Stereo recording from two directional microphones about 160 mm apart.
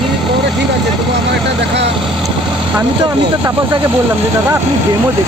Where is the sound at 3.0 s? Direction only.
30° right (ahead or behind).